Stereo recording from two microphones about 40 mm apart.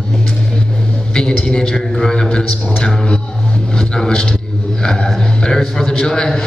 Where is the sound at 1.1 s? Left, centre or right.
Centre.